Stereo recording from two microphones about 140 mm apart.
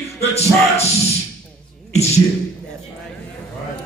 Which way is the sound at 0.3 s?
50° left (ahead or behind).